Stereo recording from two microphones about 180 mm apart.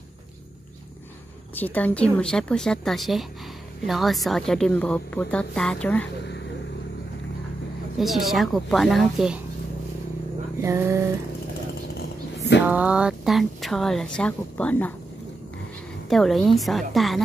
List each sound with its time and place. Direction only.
1.5 s a woman's voice: 10° left (ahead or behind)
8.0 s a woman's voice: centre (ahead or behind)
10.6 s a sound: 15° right (ahead or behind)
12.6 s a woman's voice: 5° right (ahead or behind)
16.1 s a woman's voice: centre (ahead or behind)